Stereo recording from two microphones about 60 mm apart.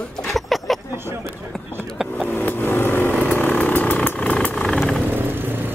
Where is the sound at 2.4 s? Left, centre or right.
Left.